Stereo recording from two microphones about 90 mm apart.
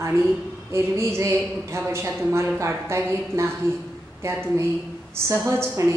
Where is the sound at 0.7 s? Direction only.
30° right (ahead or behind).